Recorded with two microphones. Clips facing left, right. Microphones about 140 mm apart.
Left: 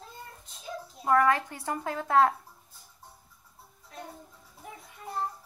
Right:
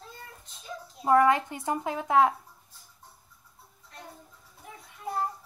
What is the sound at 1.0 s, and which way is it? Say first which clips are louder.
A woman's voice: right 2 dB; 20° right (ahead or behind).